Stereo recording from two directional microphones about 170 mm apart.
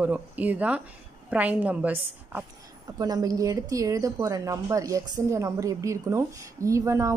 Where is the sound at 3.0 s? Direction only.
20° right (ahead or behind).